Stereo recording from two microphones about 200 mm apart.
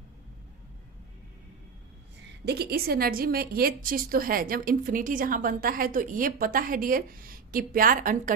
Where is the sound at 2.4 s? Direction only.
50° right (ahead or behind).